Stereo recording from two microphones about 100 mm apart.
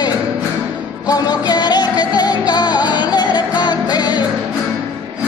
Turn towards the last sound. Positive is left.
turn(degrees=45)  # may be behind; listen again after turning